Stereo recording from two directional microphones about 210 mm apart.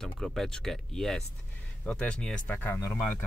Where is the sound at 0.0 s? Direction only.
Centre (ahead or behind).